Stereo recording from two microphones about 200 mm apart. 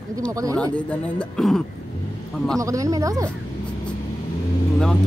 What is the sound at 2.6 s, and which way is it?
Speech, 15° right (ahead or behind).